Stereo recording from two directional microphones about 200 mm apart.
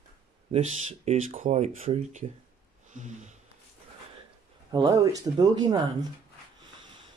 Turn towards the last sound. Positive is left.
turn(degrees=-20)  # may be behind; listen again after turning